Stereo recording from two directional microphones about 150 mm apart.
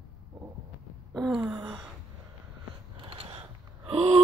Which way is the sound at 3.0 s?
35° right (ahead or behind).